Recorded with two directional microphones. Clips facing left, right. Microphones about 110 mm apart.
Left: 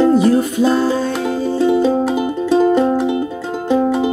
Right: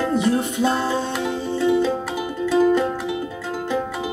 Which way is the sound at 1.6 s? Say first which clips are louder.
Left 5 dB; 25° left (ahead or behind).